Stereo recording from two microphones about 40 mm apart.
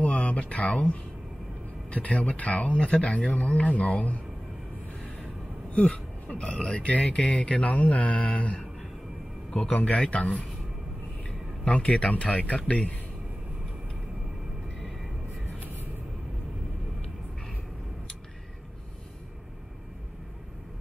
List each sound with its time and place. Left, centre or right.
0.0 s a sound: left
1.9 s speech: left
5.7 s speech: left
9.6 s speech: left
11.6 s speech: left